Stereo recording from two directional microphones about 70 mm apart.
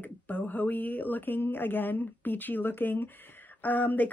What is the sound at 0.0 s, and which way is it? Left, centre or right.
Speech, left.